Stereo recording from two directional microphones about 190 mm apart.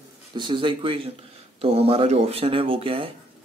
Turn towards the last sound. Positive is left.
turn(degrees=-30)  # may be behind; listen again after turning